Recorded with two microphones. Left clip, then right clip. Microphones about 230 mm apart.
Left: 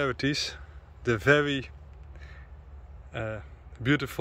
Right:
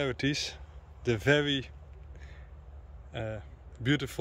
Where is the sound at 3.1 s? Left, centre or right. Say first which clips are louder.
Left 3 dB; centre.